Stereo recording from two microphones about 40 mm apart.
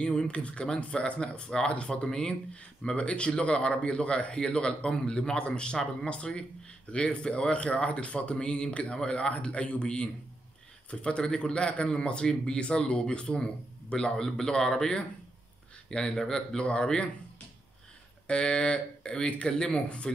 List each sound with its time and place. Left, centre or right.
0.0 s speech: left
16.2 s speech: centre
18.2 s speech: left